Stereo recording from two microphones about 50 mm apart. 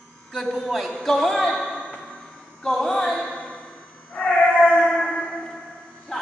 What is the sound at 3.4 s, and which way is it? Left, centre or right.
Music, left.